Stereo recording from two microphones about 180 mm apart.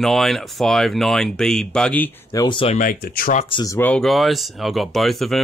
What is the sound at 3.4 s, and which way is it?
Speech, 30° left (ahead or behind).